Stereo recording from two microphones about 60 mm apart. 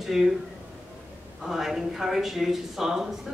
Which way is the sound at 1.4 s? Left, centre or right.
Centre.